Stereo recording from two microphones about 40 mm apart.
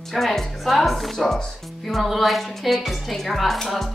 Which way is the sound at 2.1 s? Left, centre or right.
Centre.